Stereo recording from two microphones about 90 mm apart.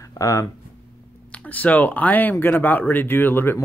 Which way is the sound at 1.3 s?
15° left (ahead or behind).